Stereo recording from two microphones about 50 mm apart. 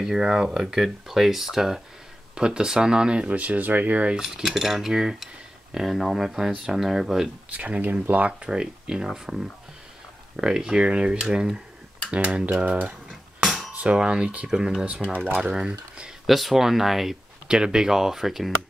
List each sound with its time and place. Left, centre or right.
0.0 s speech: centre; by 4.2 s right
4.2 s speech: centre
7.5 s speech: right
8.5 s speech: centre
13.7 s speech: right
15.0 s speech: centre
16.3 s speech: centre
17.5 s speech: centre